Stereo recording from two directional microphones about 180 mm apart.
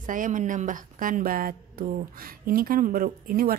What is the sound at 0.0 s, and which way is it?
A woman's voice, 45° right (ahead or behind).